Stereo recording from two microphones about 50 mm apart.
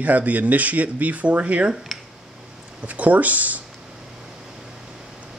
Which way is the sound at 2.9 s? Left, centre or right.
Right.